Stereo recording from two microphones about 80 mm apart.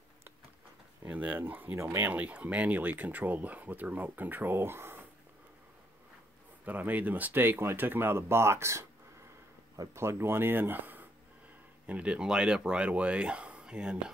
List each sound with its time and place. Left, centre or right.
1.0 s speech: centre
6.6 s speech: right
9.9 s speech: right; by 14.1 s centre